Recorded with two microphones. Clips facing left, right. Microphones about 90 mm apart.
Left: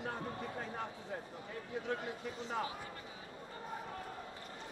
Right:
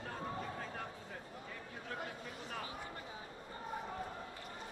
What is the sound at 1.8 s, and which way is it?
Speech, 20° left (ahead or behind).